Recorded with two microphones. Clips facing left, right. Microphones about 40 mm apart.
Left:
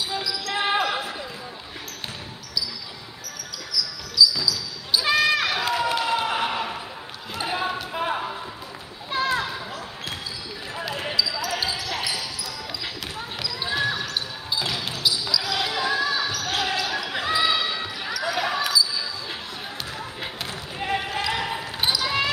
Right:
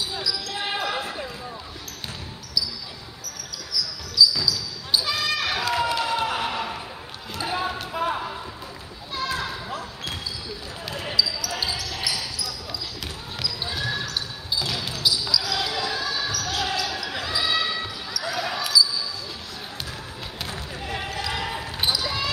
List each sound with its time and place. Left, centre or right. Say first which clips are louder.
0.5 s basketball bounce: left 9 dB; left
5.1 s a sound: left 5 dB; left
5.5 s a sound: even; centre
6.1 s a sound: left 1 dB; centre
6.4 s basketball bounce: left 1 dB; centre
9.1 s children playing: left 4 dB; left
11.0 s basketball bounce: right 2 dB; centre
11.3 s basketball bounce: left 2 dB; left
13.7 s basketball bounce: left 6 dB; left
21.1 s basketball bounce: left 3 dB; left
21.5 s basketball bounce: left 1 dB; centre
22.0 s basketball bounce: left 4 dB; left